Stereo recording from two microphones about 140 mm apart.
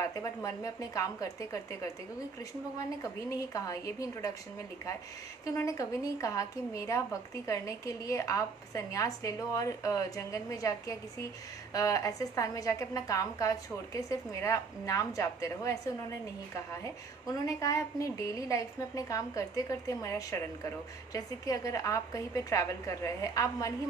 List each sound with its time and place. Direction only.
0.0 s a woman's voice: 25° left (ahead or behind)
3.0 s a woman's voice: 25° left (ahead or behind)
5.4 s a woman's voice: 25° left (ahead or behind)